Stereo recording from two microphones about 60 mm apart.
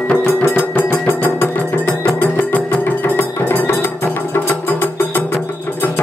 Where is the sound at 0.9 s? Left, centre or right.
Left.